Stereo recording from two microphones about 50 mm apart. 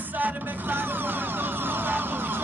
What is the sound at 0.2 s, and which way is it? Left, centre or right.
Music, right.